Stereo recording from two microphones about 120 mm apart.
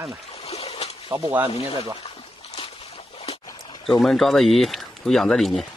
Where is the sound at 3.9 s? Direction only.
Centre (ahead or behind).